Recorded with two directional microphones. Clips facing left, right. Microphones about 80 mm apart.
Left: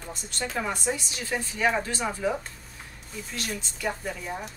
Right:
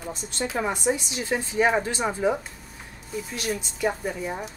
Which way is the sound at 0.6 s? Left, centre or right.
Right.